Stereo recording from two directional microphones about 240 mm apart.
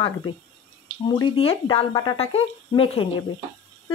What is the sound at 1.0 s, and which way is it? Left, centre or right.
Speech, centre.